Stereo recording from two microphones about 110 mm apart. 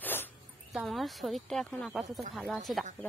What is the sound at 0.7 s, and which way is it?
Speech, centre (ahead or behind).